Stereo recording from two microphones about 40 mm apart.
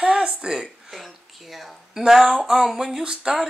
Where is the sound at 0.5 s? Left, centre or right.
Centre.